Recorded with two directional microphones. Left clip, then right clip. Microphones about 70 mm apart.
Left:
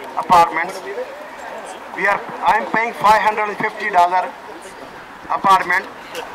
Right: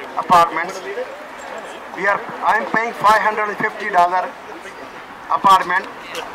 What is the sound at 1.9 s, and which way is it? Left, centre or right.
Speech, right.